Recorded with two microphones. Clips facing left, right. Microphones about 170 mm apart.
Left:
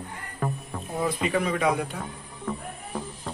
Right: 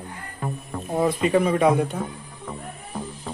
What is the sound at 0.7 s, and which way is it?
Music, 5° left (ahead or behind).